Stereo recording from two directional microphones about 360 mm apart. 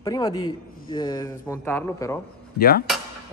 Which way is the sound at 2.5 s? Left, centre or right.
Left.